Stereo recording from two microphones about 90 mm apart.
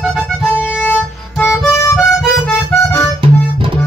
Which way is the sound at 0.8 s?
15° left (ahead or behind).